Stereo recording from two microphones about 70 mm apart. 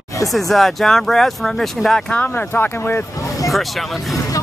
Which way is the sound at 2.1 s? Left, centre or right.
Left.